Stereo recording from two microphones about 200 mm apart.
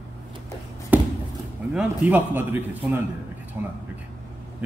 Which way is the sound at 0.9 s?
10° right (ahead or behind).